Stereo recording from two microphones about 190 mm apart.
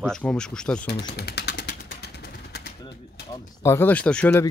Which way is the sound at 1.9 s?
60° left (ahead or behind).